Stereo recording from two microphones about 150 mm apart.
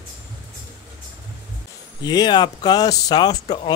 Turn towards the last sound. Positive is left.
turn(degrees=25)  # may be behind; listen again after turning